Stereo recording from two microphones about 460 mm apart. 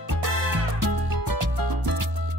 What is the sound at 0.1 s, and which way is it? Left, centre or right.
Music, right.